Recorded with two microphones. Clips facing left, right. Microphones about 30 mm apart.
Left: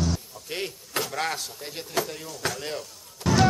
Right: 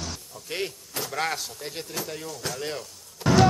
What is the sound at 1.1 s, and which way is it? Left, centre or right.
Speech, centre.